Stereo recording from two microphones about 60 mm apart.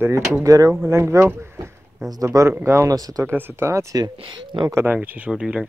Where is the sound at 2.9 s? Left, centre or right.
Right.